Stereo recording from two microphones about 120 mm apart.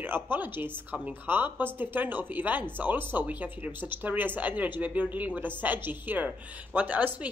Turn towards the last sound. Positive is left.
turn(degrees=-15)  # may be behind; listen again after turning